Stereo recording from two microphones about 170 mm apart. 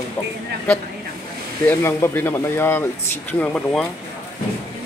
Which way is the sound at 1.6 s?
15° left (ahead or behind).